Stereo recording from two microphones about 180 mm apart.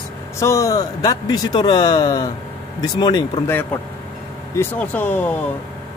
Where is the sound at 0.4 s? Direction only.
15° left (ahead or behind).